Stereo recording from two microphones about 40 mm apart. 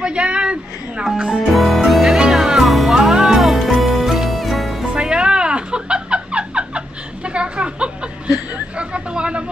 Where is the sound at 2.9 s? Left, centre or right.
Centre.